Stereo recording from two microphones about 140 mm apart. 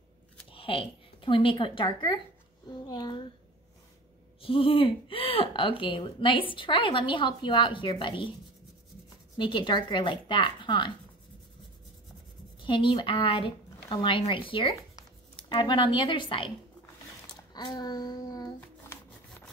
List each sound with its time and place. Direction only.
0.5 s speech: 40° left (ahead or behind)
4.4 s speech: 40° left (ahead or behind)
9.4 s speech: 35° left (ahead or behind)
12.6 s speech: 35° left (ahead or behind)
17.6 s child singing: 30° left (ahead or behind)